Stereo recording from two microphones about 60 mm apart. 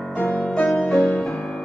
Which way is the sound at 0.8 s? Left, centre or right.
Centre.